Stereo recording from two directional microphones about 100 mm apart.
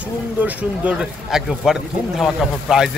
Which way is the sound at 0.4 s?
15° right (ahead or behind).